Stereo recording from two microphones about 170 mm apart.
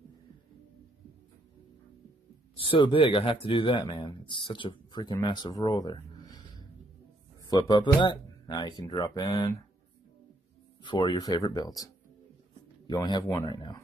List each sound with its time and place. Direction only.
2.6 s speech: 30° left (ahead or behind)
7.4 s speech: 25° left (ahead or behind)
10.8 s speech: 25° left (ahead or behind)